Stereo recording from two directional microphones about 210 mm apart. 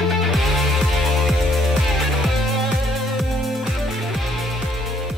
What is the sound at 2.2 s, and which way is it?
Music, centre (ahead or behind).